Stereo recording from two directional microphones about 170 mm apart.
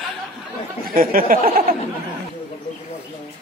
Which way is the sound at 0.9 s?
60° right (ahead or behind).